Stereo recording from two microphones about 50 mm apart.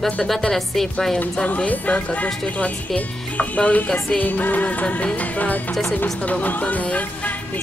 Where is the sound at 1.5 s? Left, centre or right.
Left.